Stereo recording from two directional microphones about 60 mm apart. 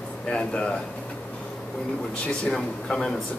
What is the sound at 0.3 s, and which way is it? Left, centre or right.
Speech, centre.